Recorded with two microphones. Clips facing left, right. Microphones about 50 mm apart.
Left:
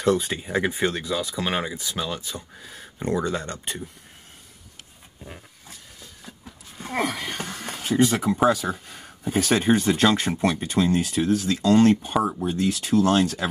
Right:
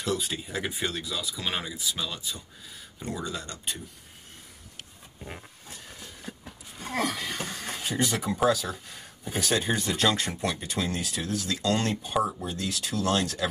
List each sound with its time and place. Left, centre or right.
0.0 s speech: left
7.0 s speech: left
12.1 s speech: left